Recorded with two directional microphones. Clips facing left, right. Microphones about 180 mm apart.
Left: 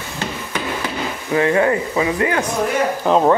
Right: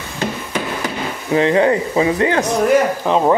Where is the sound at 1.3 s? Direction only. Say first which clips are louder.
Right 2 dB; 25° right (ahead or behind).